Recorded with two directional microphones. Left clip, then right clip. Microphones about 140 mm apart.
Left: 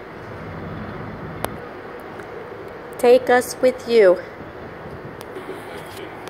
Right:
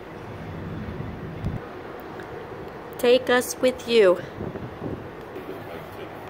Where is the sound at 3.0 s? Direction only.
15° right (ahead or behind).